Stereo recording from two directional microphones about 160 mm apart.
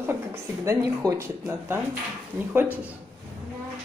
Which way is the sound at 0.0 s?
15° right (ahead or behind).